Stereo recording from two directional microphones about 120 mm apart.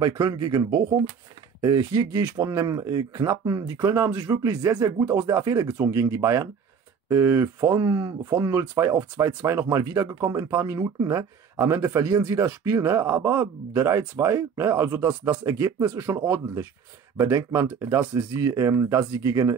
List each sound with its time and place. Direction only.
0.0 s speech: 35° right (ahead or behind)
17.2 s speech: 25° right (ahead or behind)